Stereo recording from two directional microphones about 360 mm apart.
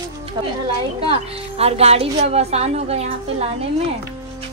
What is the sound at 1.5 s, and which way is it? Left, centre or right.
Speech, centre.